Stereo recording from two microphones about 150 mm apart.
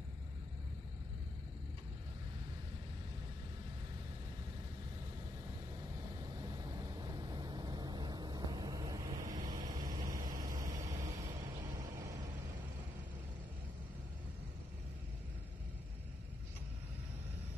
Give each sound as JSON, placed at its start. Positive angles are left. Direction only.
{"t": 6.2, "sound": "vehicle", "side_deg": -25}